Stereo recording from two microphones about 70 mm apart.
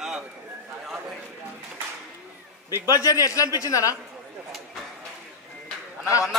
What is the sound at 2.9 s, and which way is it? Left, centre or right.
A man's voice, left.